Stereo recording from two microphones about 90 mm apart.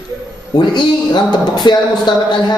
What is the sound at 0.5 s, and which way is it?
A man's voice, 55° left (ahead or behind).